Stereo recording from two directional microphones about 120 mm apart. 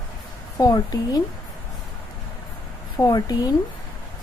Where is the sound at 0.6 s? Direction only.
35° left (ahead or behind).